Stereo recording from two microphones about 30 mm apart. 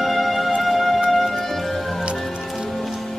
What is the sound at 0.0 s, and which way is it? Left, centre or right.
Music, centre.